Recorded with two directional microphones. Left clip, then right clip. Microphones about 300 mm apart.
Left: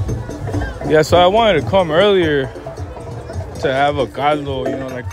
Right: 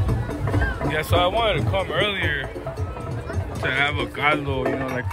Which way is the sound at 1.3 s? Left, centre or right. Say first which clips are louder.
Left 9 dB; left.